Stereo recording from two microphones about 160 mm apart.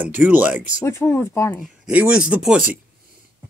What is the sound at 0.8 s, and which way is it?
Speech, 15° left (ahead or behind).